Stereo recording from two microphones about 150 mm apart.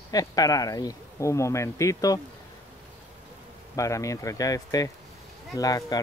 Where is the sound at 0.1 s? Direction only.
25° left (ahead or behind).